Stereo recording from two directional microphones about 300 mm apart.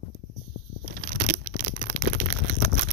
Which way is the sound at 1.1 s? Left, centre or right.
Right.